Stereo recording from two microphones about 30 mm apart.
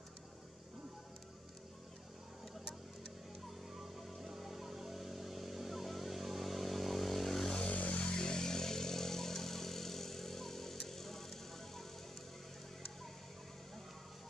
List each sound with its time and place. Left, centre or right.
4.2 s vehicle: centre
7.7 s a sound: left
8.0 s motorcycle: left; by 11.8 s centre